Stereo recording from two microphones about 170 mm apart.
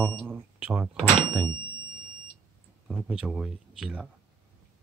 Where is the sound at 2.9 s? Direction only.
5° right (ahead or behind).